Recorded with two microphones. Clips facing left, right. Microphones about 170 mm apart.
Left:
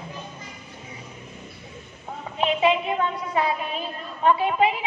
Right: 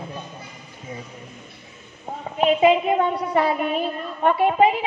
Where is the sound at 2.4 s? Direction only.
40° right (ahead or behind).